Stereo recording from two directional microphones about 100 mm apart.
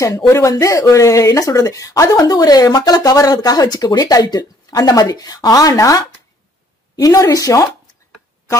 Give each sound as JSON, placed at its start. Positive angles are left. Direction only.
{"t": 0.0, "sound": "speech", "side_deg": 30}